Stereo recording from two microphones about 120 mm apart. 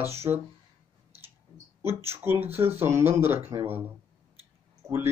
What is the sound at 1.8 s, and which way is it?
Speech, 20° right (ahead or behind).